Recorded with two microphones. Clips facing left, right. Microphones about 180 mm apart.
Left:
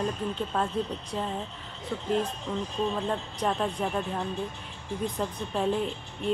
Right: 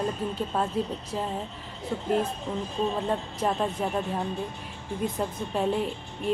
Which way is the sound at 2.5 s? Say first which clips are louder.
Right 1 dB; 20° right (ahead or behind).